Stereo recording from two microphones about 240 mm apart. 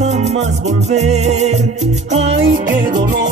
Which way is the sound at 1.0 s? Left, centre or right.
Right.